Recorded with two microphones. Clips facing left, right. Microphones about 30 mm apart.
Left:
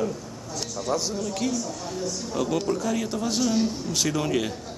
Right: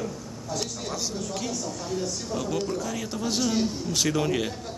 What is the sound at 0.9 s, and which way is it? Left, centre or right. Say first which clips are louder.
Speech: left 5 dB; centre.